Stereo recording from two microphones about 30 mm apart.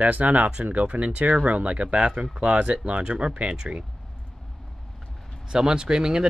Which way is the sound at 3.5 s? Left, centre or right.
Right.